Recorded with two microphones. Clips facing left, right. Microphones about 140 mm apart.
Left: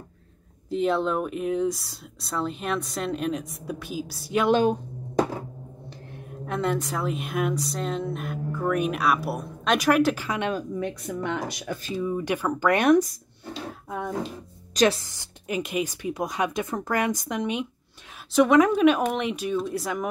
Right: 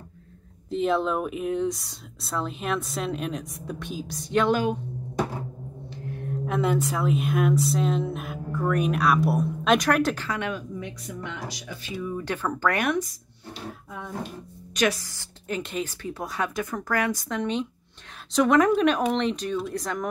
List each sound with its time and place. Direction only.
0.7 s speech: centre (ahead or behind)
4.5 s a woman's voice: 30° left (ahead or behind)
6.4 s speech: centre (ahead or behind)
10.2 s a woman's voice: 20° left (ahead or behind)
10.8 s speech: 50° left (ahead or behind)
12.0 s a woman's voice: 15° left (ahead or behind)
13.8 s a sound: 65° left (ahead or behind)
14.7 s a woman's voice: 30° left (ahead or behind); by 20.1 s 5° left (ahead or behind)